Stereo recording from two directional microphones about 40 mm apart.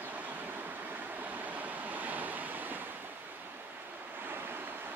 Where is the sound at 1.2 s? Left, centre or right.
Right.